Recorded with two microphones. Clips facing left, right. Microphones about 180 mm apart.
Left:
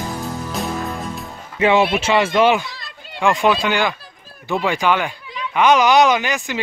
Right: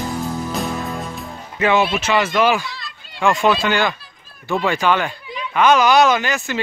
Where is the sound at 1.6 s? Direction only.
30° left (ahead or behind).